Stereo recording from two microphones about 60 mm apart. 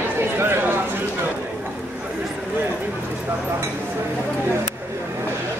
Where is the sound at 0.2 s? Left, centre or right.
Right.